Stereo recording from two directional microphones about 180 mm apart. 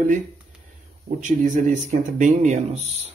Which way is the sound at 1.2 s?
45° right (ahead or behind).